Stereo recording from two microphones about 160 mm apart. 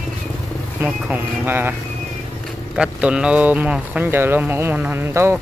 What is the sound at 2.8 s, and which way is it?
Speech, 5° right (ahead or behind).